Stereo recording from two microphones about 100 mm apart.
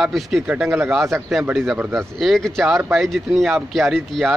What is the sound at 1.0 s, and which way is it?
Speech, 25° right (ahead or behind).